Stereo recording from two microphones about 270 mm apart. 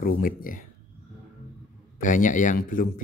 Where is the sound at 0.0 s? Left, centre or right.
Left.